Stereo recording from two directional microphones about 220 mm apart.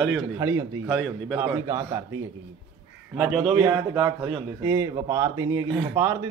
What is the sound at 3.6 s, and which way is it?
A man's voice, 15° right (ahead or behind).